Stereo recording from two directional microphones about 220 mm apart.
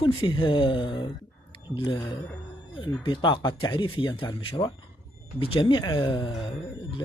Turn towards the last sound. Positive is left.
turn(degrees=20)  # may be behind; listen again after turning